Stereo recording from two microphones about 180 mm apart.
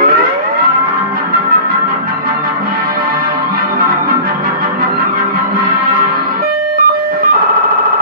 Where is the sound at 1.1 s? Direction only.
55° right (ahead or behind).